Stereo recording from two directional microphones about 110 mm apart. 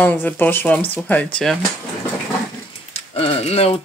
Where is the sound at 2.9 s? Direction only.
65° left (ahead or behind).